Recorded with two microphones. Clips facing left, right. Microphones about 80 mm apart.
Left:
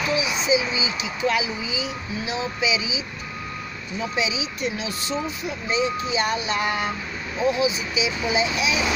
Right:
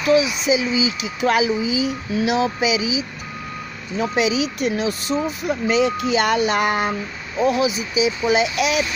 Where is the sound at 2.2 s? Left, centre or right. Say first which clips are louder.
Right 9 dB; right.